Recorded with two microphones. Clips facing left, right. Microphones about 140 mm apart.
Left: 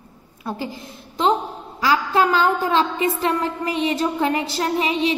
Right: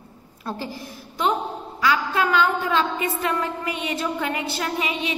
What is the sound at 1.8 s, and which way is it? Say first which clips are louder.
A woman's voice: left 3 dB; 35° left (ahead or behind).